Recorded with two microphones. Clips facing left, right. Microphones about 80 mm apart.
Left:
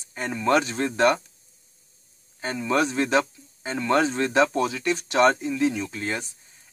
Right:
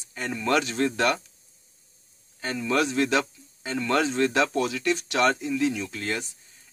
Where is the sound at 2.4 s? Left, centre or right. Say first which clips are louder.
Left 2 dB; left.